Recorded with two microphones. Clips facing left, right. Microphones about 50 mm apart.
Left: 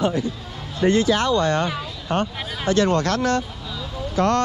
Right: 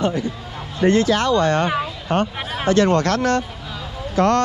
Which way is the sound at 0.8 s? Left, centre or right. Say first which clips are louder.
Right 2 dB; right.